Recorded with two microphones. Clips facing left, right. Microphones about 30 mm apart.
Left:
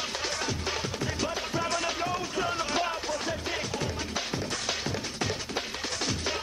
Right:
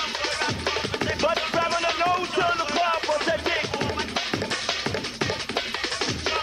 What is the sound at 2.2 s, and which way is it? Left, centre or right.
Music, right.